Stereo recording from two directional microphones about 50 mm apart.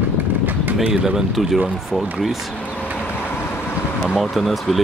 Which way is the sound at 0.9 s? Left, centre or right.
Centre.